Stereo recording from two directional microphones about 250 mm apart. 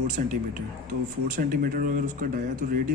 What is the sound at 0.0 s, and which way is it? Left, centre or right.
Speech, right.